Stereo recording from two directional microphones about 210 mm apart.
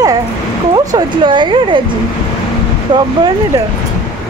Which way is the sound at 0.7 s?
20° right (ahead or behind).